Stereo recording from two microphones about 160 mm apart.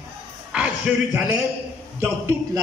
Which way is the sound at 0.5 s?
5° right (ahead or behind).